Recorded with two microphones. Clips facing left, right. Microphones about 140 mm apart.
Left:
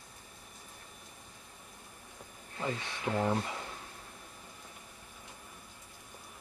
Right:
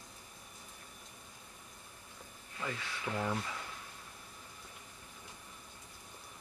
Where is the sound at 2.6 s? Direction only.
30° left (ahead or behind).